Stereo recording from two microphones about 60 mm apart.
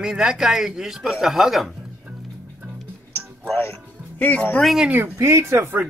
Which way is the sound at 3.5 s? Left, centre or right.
Left.